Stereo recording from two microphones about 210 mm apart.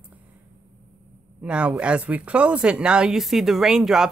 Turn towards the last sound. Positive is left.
turn(degrees=0)  # may be behind; listen again after turning